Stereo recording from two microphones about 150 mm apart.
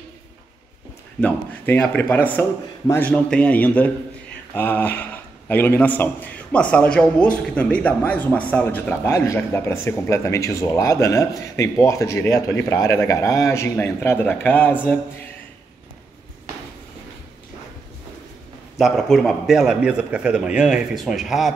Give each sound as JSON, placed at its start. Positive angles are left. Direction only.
{"t": 1.2, "sound": "a man's voice", "side_deg": 10}
{"t": 18.8, "sound": "a man's voice", "side_deg": 0}